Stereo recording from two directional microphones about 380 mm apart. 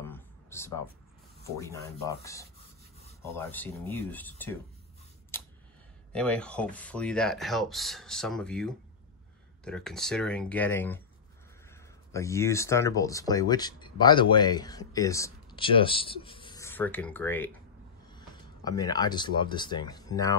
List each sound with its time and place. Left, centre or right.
0.0 s a sound: centre
1.4 s speech: centre
6.1 s speech: centre